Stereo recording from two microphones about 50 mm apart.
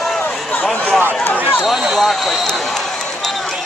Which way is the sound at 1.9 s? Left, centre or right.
Centre.